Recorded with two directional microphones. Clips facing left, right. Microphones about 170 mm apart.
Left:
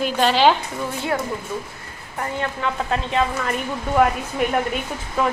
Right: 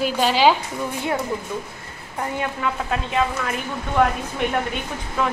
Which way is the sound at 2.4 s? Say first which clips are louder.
Left 2 dB; 5° right (ahead or behind).